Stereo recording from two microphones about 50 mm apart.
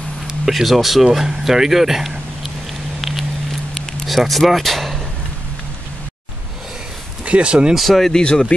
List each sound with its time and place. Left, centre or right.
0.5 s speech: centre
3.0 s a sound: centre
7.2 s speech: right
7.7 s speech: centre
8.1 s speech: centre